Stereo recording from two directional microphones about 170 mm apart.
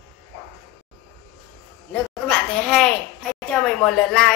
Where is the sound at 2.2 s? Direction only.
5° left (ahead or behind).